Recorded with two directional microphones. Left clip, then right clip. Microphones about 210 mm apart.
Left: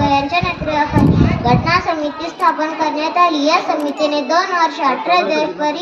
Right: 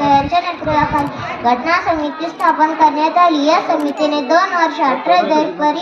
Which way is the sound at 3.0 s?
40° left (ahead or behind).